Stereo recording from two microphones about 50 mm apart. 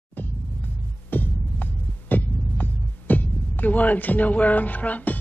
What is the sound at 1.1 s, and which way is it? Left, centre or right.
Throbbing, left.